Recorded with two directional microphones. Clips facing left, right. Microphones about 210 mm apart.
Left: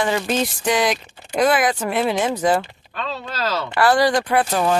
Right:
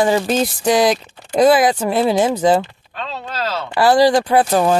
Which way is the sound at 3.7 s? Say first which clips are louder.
Right 5 dB; 25° right (ahead or behind).